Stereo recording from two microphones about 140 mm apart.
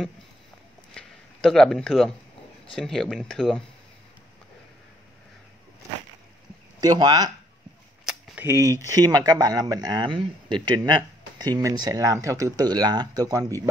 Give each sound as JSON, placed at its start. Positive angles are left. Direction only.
{"t": 0.9, "sound": "speech", "side_deg": 5}
{"t": 6.8, "sound": "speech", "side_deg": -30}
{"t": 8.0, "sound": "cap gun", "side_deg": -5}
{"t": 8.5, "sound": "speech", "side_deg": -20}